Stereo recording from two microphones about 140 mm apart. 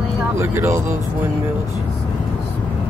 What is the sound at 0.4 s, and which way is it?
Speech, 20° right (ahead or behind).